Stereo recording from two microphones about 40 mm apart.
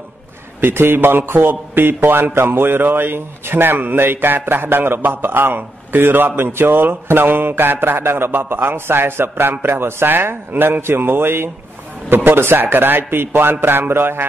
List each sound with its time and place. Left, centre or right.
0.6 s a man's voice: right
12.1 s a man's voice: right